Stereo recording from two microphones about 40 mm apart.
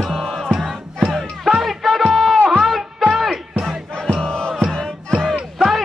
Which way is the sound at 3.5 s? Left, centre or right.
Centre.